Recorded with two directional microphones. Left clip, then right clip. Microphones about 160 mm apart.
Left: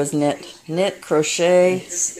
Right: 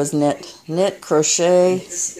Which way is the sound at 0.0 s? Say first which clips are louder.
Right 1 dB; 10° right (ahead or behind).